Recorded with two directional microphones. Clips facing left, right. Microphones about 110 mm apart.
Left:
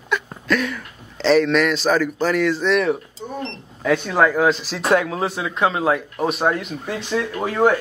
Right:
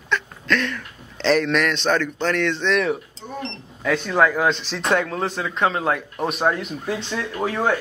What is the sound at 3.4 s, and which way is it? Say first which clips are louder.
Speech: left 3 dB; 5° left (ahead or behind).